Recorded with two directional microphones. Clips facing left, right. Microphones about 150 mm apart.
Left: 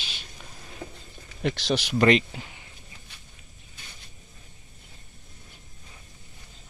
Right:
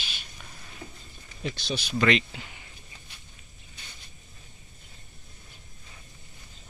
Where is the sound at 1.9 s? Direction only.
45° left (ahead or behind).